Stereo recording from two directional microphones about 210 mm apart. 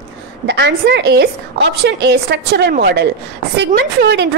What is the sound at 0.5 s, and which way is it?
A woman's voice, 55° right (ahead or behind).